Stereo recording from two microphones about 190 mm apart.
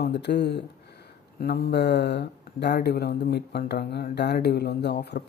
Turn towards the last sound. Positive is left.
turn(degrees=60)  # may be behind; listen again after turning